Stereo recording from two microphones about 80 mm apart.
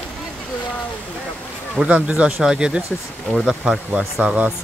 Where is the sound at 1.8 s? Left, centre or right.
Centre.